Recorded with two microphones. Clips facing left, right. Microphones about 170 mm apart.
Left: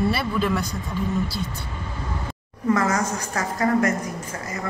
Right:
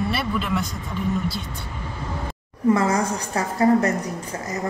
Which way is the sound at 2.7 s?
30° right (ahead or behind).